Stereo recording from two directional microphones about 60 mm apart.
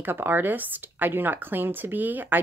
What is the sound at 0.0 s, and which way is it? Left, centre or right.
A woman's voice, right.